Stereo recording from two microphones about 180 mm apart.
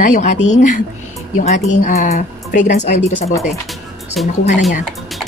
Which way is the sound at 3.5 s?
Centre (ahead or behind).